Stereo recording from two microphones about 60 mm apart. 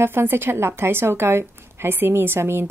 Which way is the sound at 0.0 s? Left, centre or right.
Right.